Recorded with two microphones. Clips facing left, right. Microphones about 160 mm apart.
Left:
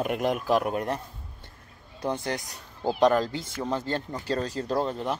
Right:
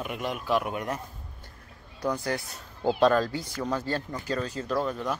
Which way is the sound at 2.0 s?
25° left (ahead or behind).